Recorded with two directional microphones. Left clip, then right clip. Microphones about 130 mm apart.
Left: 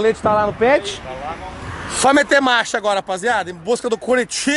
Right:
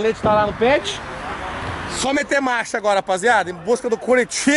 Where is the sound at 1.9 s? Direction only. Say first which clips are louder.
Left 8 dB; 25° left (ahead or behind).